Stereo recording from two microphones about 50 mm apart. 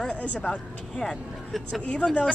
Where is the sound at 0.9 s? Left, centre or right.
Centre.